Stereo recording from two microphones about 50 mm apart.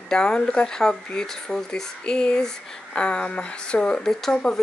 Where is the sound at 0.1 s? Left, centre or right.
Centre.